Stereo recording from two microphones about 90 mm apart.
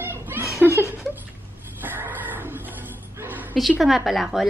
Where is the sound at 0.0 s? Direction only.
25° right (ahead or behind).